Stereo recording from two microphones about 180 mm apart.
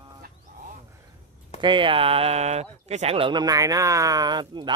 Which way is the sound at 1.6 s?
25° right (ahead or behind).